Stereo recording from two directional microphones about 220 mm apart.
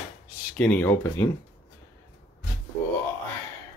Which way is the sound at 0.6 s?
5° left (ahead or behind).